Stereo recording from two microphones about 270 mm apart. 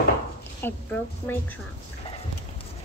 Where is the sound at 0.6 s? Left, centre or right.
Centre.